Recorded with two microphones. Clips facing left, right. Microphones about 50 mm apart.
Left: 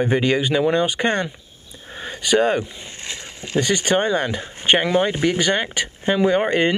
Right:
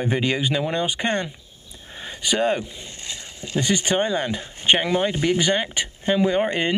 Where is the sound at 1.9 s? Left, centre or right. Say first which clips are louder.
Left 4 dB; centre.